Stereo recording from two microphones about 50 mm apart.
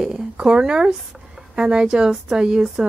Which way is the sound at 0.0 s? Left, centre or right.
Centre.